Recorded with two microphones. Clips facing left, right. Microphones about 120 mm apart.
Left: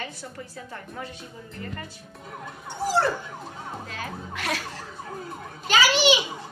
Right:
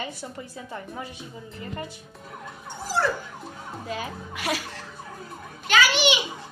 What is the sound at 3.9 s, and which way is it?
Speech, 10° right (ahead or behind).